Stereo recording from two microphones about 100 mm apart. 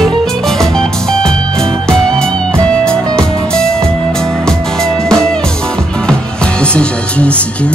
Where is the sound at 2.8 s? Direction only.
10° left (ahead or behind).